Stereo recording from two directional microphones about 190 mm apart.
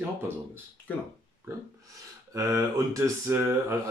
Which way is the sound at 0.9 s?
10° left (ahead or behind).